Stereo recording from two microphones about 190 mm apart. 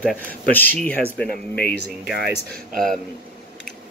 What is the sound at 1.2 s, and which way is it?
Speech, 55° left (ahead or behind).